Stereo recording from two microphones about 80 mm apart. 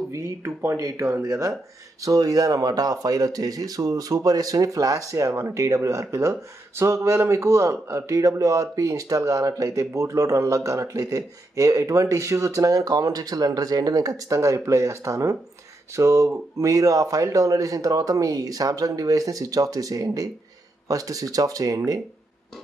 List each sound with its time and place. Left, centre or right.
0.1 s speech: right